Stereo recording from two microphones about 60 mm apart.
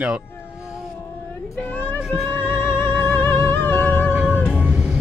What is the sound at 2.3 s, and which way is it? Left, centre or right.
Music, left.